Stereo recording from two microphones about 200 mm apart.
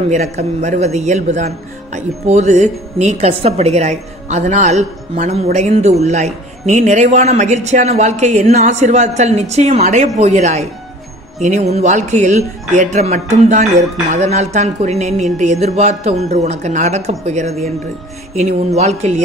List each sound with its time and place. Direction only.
0.1 s speech: 35° right (ahead or behind)
18.8 s speech: 35° right (ahead or behind)